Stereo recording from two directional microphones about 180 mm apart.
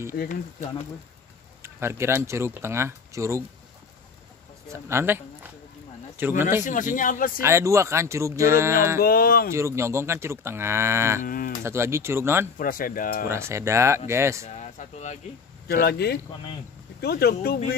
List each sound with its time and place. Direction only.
0.1 s speech: 55° left (ahead or behind)
1.6 s speech: 15° right (ahead or behind)
4.6 s speech: 15° right (ahead or behind)
6.6 s a man's voice: 45° left (ahead or behind)
7.4 s speech: 15° right (ahead or behind)
9.0 s speech: 55° left (ahead or behind)
9.5 s speech: 15° right (ahead or behind)
11.2 s a man's voice: 50° left (ahead or behind)
11.6 s speech: 15° right (ahead or behind)
12.5 s a man's voice: 50° left (ahead or behind)
13.3 s speech: 15° right (ahead or behind)
14.5 s speech: 40° left (ahead or behind)
15.7 s speech: 60° left (ahead or behind)